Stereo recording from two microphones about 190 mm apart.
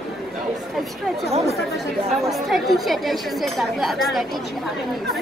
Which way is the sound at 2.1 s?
Centre (ahead or behind).